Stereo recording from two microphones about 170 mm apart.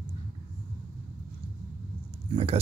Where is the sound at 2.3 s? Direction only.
35° right (ahead or behind).